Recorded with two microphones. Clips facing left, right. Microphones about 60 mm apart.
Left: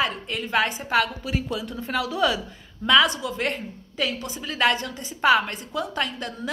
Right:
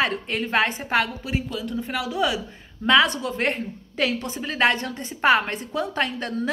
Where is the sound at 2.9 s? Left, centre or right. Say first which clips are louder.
Right 1 dB; right.